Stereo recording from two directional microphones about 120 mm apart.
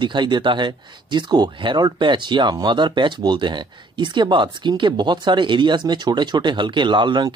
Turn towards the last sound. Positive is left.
turn(degrees=-40)  # may be behind; listen again after turning